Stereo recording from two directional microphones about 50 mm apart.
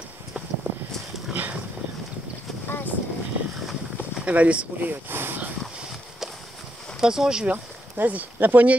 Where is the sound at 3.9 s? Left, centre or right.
Right.